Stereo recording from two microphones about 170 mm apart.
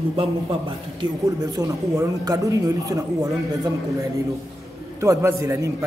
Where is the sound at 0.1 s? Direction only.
30° right (ahead or behind).